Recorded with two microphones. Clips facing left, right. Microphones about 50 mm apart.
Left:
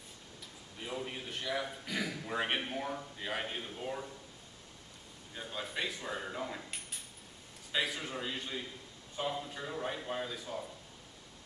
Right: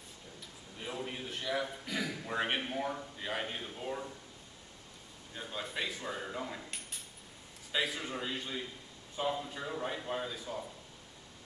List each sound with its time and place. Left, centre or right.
0.7 s a man's voice: centre
5.3 s a man's voice: centre